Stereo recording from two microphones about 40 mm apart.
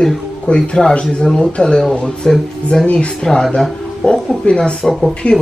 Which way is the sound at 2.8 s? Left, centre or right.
Left.